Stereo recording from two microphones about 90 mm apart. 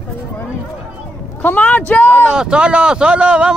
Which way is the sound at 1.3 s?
20° left (ahead or behind).